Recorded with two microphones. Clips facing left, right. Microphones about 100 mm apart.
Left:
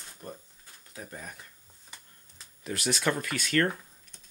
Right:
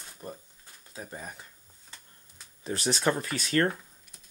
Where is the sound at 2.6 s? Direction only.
30° right (ahead or behind).